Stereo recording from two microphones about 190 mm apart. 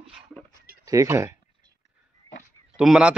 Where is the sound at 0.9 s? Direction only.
15° right (ahead or behind).